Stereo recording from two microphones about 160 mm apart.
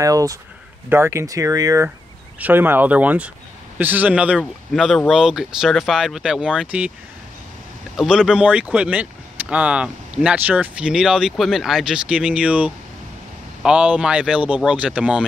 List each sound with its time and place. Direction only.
0.0 s speech: 20° right (ahead or behind)
7.9 s speech: 5° right (ahead or behind)